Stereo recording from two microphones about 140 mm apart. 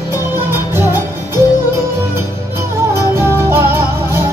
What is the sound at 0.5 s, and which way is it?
Music, 15° right (ahead or behind).